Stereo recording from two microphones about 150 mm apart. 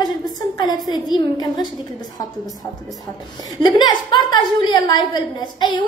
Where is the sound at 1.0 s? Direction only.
30° left (ahead or behind).